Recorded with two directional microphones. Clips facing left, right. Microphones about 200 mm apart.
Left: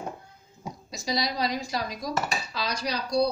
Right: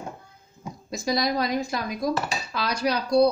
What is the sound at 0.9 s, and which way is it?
Dishes, 50° right (ahead or behind).